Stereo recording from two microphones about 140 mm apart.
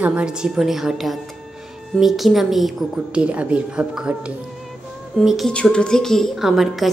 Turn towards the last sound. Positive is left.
turn(degrees=0)  # may be behind; listen again after turning